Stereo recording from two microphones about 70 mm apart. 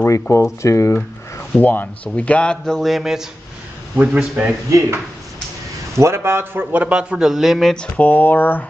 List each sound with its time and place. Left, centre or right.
0.0 s speech: left
1.5 s speech: left
2.8 s a man's voice: centre
3.9 s a man's voice: centre
4.6 s a man's voice: right
6.9 s a man's voice: centre
8.0 s speech: left